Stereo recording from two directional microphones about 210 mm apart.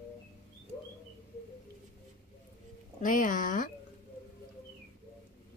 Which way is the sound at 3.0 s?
40° left (ahead or behind).